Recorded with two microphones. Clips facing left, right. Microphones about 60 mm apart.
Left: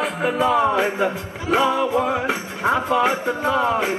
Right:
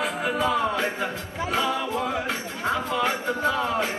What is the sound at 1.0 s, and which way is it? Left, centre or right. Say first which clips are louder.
Music: left 6 dB; left.